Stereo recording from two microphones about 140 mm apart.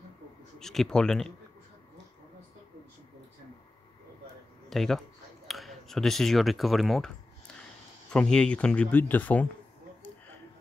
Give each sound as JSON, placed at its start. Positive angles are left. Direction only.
{"t": 0.6, "sound": "speech", "side_deg": 5}
{"t": 4.6, "sound": "a man's voice", "side_deg": 0}
{"t": 8.1, "sound": "speech", "side_deg": 5}